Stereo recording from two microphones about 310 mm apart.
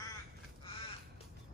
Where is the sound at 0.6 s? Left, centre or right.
Centre.